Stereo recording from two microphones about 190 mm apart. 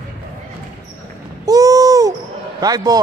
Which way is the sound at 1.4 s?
20° right (ahead or behind).